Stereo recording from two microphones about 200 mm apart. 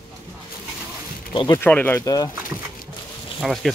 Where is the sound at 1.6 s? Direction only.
10° left (ahead or behind).